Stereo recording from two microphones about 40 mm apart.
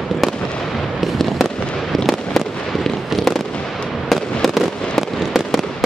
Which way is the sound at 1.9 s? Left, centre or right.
Centre.